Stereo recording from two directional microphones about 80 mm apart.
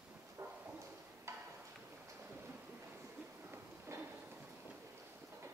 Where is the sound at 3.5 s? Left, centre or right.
Right.